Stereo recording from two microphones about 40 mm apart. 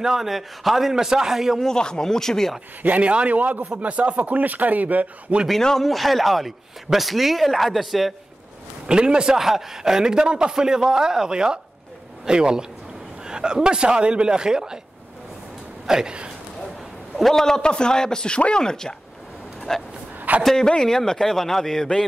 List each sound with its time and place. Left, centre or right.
0.0 s a man's voice: centre
1.6 s a man's voice: centre
2.8 s speech: right
3.6 s speech: right
5.6 s a man's voice: centre
5.9 s speech: centre
8.8 s speech: right
9.4 s a man's voice: centre
15.9 s a man's voice: centre
17.2 s a man's voice: centre
20.2 s a sound: right
20.5 s a man's voice: centre